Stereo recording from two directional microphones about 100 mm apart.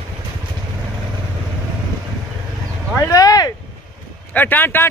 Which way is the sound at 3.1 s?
35° left (ahead or behind).